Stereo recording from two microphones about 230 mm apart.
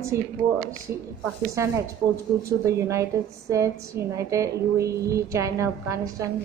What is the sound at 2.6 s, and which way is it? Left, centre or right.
A woman's voice, centre.